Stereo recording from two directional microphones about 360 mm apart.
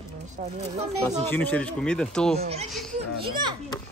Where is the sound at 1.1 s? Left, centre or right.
Centre.